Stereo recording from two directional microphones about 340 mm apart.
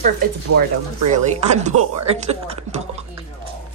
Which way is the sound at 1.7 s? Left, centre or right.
Right.